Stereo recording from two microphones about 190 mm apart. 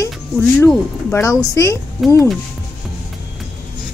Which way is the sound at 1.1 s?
15° left (ahead or behind).